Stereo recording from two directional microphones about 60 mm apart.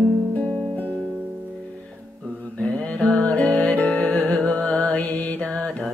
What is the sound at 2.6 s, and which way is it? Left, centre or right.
Music, centre.